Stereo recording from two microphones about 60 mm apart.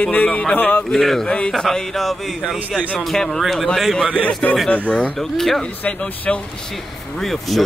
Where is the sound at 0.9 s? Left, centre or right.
Centre.